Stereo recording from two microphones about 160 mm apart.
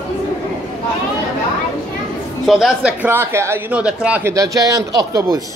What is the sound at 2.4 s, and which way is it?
A man's voice, 5° right (ahead or behind).